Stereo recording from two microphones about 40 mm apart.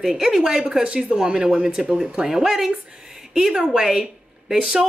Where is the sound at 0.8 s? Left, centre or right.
Right.